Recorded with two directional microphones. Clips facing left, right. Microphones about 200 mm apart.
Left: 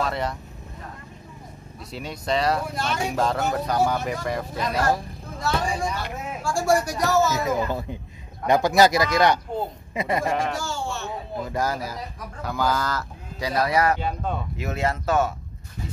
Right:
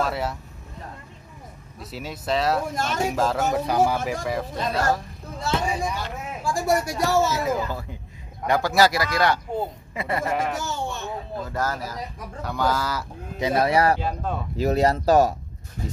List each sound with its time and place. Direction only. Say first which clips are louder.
0.0 s speech: right 1 dB; 5° right (ahead or behind)
1.8 s speech: even; 5° right (ahead or behind)
2.7 s speech: even; 45° right (ahead or behind)
3.1 s speech: even; 5° right (ahead or behind)
5.4 s speech: even; 20° right (ahead or behind)
7.6 s speech: left 4 dB; 20° left (ahead or behind)
10.5 s a sound: even; 20° right (ahead or behind)
11.3 s speech: left 2 dB; 15° left (ahead or behind)
12.4 s speech: even; centre (ahead or behind)
13.4 s speech: right 2 dB; 25° right (ahead or behind)
13.9 s speech: even; centre (ahead or behind)
14.6 s speech: right 8 dB; 35° right (ahead or behind)